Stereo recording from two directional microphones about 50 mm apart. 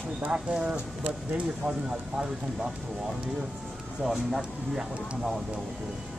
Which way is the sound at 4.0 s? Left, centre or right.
Centre.